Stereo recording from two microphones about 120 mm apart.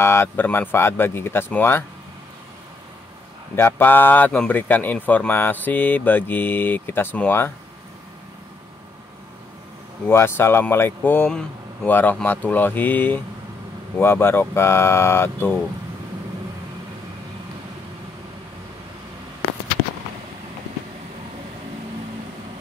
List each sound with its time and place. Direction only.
0.0 s speech: 20° left (ahead or behind)
3.5 s speech: 20° left (ahead or behind)
10.0 s speech: 20° left (ahead or behind)